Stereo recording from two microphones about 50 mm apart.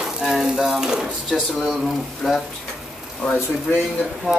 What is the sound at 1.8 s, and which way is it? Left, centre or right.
Stir, centre.